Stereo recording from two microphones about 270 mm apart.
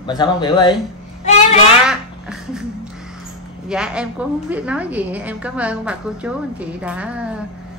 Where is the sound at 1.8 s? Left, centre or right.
Centre.